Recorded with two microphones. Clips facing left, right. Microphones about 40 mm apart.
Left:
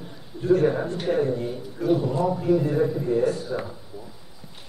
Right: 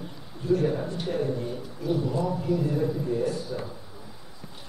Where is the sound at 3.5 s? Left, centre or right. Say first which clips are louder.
Left 4 dB; left.